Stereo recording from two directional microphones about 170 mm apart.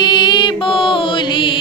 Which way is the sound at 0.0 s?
25° left (ahead or behind).